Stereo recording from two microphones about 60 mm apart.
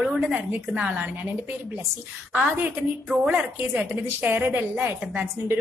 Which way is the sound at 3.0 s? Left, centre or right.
Centre.